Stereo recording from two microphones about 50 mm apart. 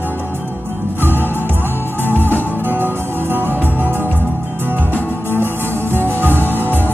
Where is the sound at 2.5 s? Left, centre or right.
Right.